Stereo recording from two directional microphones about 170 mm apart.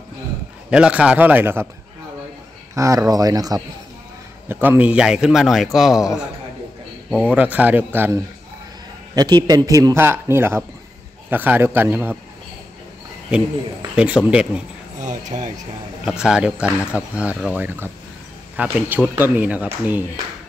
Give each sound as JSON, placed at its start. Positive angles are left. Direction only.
{"t": 0.7, "sound": "speech", "side_deg": -5}
{"t": 2.7, "sound": "a man's voice", "side_deg": -20}
{"t": 4.5, "sound": "a man's voice", "side_deg": -10}
{"t": 7.1, "sound": "speech", "side_deg": -5}
{"t": 9.1, "sound": "a man's voice", "side_deg": -25}
{"t": 13.9, "sound": "speech", "side_deg": -5}
{"t": 15.0, "sound": "speech", "side_deg": -45}
{"t": 16.1, "sound": "speech", "side_deg": -5}